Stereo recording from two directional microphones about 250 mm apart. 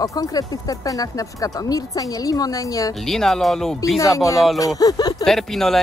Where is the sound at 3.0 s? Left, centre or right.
Centre.